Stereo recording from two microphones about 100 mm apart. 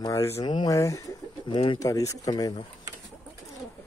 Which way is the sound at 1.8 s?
35° left (ahead or behind).